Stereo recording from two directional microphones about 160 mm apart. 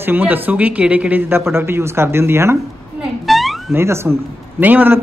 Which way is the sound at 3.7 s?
15° right (ahead or behind).